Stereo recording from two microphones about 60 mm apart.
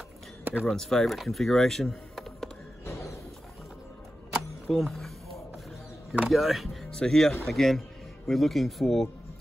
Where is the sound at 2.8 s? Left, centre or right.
Left.